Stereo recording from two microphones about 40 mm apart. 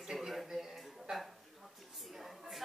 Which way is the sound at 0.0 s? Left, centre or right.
Centre.